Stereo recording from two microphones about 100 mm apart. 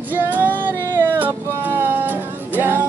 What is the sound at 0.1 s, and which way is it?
Female singing, 20° right (ahead or behind).